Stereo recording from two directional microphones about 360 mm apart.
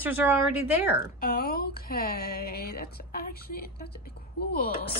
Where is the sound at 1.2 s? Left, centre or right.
Left.